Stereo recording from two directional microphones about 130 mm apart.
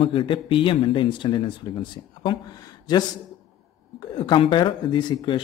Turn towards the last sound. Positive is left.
turn(degrees=35)  # may be behind; listen again after turning